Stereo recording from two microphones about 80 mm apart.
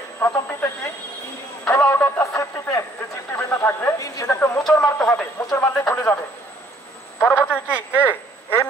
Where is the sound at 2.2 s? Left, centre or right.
Left.